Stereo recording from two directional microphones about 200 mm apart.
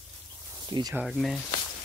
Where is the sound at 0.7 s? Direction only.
20° right (ahead or behind).